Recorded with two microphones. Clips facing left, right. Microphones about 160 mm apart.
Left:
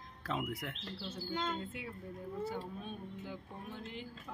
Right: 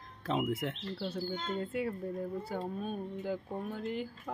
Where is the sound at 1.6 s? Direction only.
45° right (ahead or behind).